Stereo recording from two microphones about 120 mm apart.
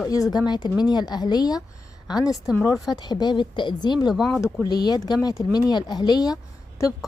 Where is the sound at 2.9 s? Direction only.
35° left (ahead or behind).